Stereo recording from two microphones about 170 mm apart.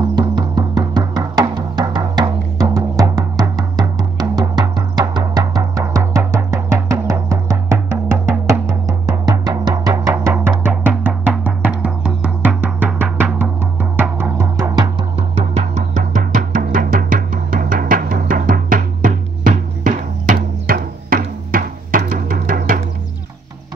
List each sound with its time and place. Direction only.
0.1 s music: 25° right (ahead or behind)
10.1 s music: 10° right (ahead or behind); by 22.8 s 55° right (ahead or behind)